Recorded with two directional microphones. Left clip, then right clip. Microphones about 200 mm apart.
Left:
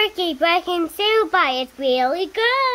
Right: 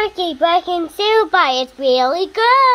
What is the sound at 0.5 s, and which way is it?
Child singing, 30° left (ahead or behind).